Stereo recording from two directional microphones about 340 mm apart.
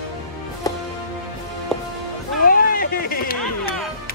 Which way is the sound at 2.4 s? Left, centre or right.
Left.